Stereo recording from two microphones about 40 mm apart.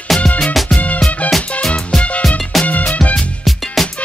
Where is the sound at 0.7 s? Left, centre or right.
Left.